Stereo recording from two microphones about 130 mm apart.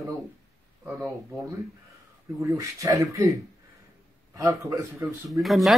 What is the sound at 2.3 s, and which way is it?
Speech, 25° right (ahead or behind).